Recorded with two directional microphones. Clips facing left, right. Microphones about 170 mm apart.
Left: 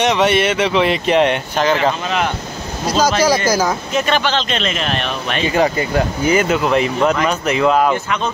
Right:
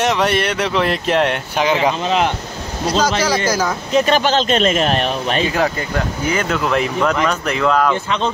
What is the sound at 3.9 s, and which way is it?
Speech, 35° right (ahead or behind).